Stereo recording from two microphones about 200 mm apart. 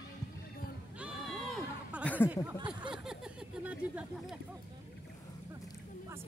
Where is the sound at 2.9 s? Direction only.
5° right (ahead or behind).